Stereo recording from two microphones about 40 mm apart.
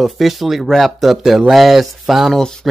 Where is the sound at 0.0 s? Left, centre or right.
Centre.